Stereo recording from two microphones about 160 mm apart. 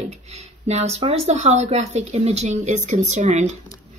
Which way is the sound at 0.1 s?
45° right (ahead or behind).